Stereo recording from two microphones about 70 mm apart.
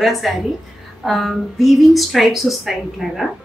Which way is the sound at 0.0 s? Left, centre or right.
Centre.